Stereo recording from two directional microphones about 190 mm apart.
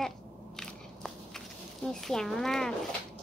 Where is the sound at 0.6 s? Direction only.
Centre (ahead or behind).